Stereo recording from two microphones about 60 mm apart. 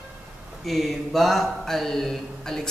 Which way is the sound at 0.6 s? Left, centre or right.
Centre.